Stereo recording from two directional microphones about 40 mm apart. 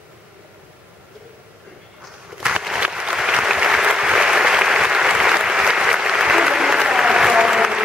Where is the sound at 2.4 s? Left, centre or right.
Centre.